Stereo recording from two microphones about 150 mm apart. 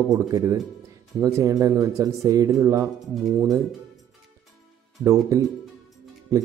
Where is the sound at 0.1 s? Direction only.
25° right (ahead or behind).